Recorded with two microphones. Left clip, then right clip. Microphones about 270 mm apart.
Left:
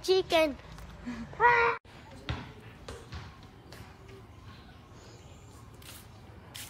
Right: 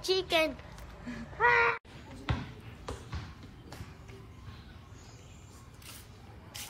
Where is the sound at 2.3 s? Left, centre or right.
Centre.